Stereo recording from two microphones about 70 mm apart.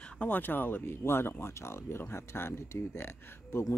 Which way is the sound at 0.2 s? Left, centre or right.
Left.